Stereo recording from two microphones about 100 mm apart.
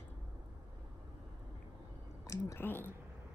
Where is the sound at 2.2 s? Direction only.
30° left (ahead or behind).